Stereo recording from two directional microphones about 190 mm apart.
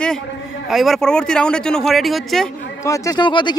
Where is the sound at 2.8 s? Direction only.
15° left (ahead or behind).